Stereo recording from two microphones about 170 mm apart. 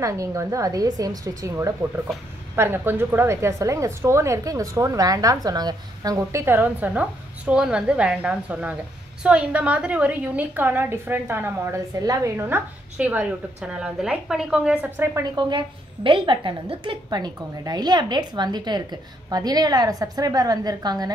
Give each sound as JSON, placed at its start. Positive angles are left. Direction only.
{"t": 0.0, "sound": "a woman's voice", "side_deg": -20}
{"t": 15.2, "sound": "a woman's voice", "side_deg": -25}